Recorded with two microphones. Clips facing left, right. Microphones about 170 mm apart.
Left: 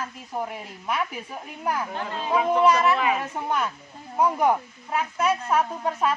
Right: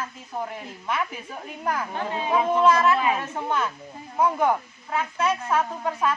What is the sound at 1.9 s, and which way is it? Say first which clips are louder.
Speech: right 2 dB; 15° right (ahead or behind).